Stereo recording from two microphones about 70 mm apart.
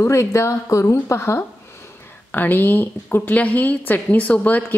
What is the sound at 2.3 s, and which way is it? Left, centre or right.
Speech, left.